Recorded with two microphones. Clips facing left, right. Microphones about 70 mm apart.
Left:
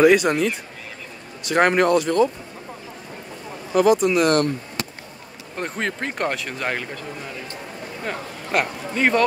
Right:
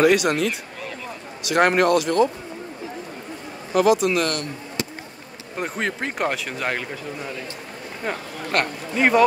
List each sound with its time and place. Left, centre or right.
0.0 s speech: centre
3.7 s speech: centre
4.3 s speech: left
5.6 s speech: centre
8.5 s speech: centre